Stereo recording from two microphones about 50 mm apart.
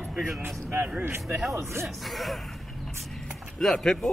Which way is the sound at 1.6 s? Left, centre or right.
Right.